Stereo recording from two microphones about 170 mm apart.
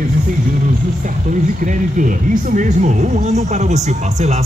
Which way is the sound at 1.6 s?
50° right (ahead or behind).